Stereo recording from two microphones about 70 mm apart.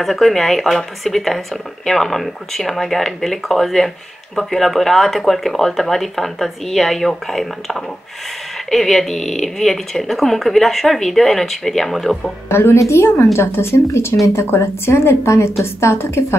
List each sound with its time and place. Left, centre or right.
0.0 s speech: centre
12.4 s a woman's voice: left